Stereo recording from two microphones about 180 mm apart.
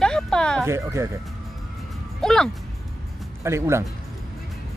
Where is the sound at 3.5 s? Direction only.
15° right (ahead or behind).